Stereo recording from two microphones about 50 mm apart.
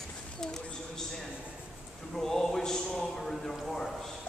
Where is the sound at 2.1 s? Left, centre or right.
Centre.